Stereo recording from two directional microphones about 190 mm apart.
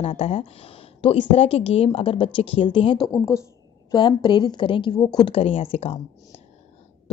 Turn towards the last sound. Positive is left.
turn(degrees=30)  # may be behind; listen again after turning